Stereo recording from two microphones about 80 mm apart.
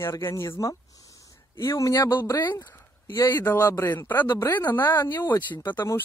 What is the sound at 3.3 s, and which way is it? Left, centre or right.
Speech, left.